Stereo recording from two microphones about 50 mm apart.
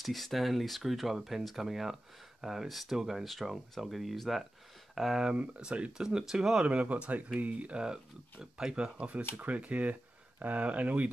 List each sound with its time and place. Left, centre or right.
0.0 s speech: centre
5.2 s speech: right
6.7 s speech: right
7.8 s speech: centre
8.9 s speech: right